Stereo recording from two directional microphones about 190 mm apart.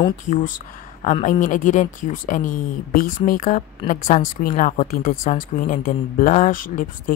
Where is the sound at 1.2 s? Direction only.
45° left (ahead or behind).